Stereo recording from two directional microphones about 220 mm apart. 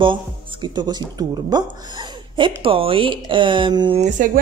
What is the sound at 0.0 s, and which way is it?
Speech, 20° right (ahead or behind).